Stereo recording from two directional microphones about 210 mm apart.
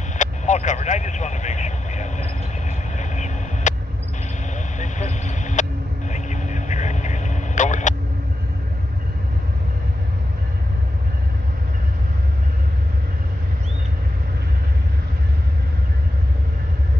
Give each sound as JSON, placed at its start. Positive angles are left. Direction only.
{"t": 0.2, "sound": "vehicle", "side_deg": 35}
{"t": 4.7, "sound": "vehicle", "side_deg": 35}